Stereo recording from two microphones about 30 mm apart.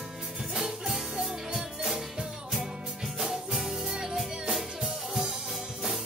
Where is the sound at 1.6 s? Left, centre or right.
Centre.